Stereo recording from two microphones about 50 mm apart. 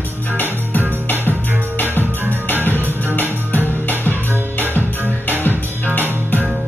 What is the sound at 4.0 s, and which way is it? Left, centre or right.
Music, left.